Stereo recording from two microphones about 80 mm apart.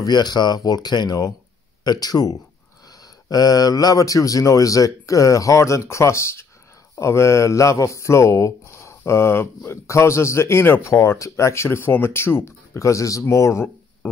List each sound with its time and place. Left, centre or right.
0.0 s speech: left